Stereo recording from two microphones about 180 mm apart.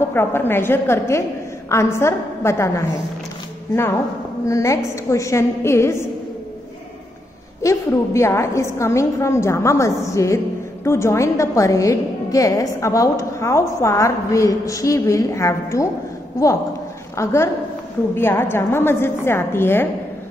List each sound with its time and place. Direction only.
0.1 s a woman's voice: 10° left (ahead or behind)
4.5 s a woman's voice: 15° left (ahead or behind)
7.6 s a woman's voice: 15° left (ahead or behind)
17.2 s a woman's voice: 15° left (ahead or behind)